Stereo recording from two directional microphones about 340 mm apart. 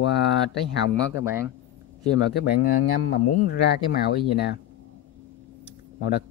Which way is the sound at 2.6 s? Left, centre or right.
Left.